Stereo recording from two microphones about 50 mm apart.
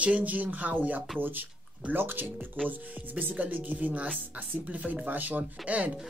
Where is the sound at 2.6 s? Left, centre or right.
Right.